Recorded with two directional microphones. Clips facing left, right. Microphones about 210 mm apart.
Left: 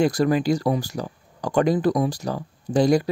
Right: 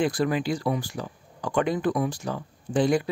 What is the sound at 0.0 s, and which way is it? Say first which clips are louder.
Speech: left 5 dB; 40° left (ahead or behind).